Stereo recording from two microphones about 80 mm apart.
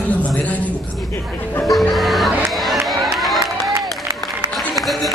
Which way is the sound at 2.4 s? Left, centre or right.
Centre.